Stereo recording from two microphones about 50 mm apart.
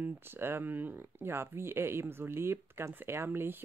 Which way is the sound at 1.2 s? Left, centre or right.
Right.